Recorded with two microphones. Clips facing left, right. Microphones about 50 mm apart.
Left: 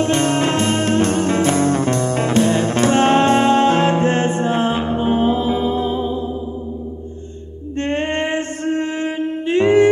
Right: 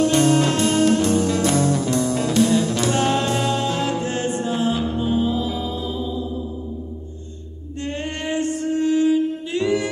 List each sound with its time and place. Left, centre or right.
0.0 s music: left
7.8 s music: left